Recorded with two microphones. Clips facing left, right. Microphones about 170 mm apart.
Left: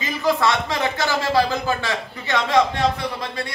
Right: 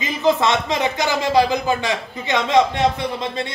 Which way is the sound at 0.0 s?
20° right (ahead or behind).